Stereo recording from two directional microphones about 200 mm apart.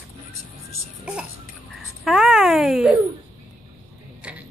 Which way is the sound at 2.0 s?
Centre (ahead or behind).